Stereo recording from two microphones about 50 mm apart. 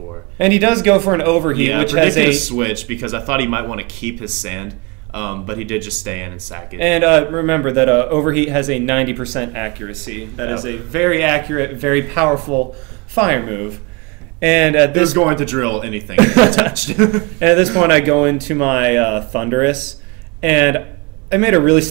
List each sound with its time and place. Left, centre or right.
0.4 s speech: centre